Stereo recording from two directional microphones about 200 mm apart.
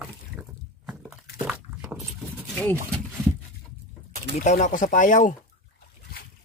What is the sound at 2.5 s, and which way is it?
Speech, 10° left (ahead or behind).